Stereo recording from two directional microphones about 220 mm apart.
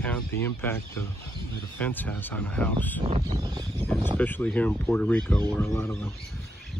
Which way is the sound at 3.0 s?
25° right (ahead or behind).